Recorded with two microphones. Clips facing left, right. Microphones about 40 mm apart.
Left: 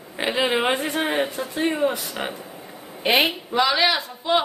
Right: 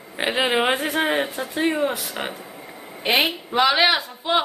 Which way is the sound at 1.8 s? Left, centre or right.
Centre.